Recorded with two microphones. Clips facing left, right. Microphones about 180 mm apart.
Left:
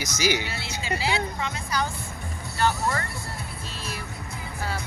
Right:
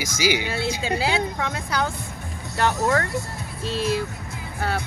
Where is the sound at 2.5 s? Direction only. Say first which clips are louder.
Right 4 dB; 70° right (ahead or behind).